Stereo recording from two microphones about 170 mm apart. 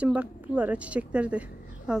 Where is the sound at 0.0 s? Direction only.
10° right (ahead or behind).